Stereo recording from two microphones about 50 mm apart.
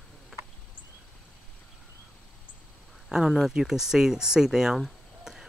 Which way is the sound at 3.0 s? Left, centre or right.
Centre.